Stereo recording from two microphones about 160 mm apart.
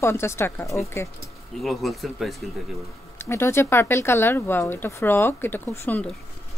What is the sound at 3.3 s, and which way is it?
Speech, 15° left (ahead or behind).